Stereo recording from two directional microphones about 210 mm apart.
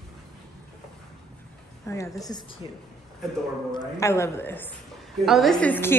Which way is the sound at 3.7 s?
15° left (ahead or behind).